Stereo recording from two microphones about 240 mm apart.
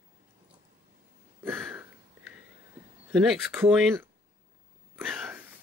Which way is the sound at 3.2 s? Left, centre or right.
Centre.